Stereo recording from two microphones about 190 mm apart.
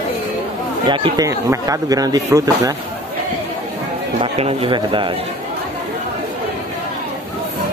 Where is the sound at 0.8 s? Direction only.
25° right (ahead or behind).